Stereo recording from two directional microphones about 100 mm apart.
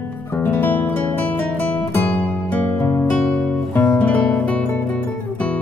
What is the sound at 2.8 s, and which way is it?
Music, 30° left (ahead or behind).